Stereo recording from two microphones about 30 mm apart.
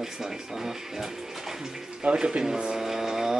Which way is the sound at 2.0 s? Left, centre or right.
Right.